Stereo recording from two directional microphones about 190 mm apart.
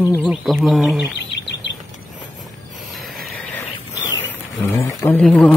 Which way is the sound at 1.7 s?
65° left (ahead or behind).